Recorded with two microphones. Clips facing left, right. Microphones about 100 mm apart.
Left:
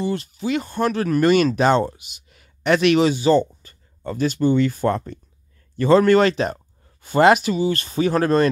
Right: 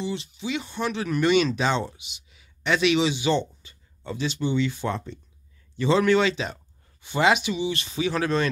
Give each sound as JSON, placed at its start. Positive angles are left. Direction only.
{"t": 0.0, "sound": "speech", "side_deg": 50}